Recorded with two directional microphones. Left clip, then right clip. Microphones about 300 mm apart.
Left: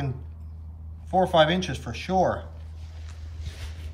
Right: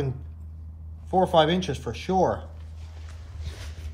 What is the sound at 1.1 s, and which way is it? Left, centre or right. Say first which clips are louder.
Speech: even; centre.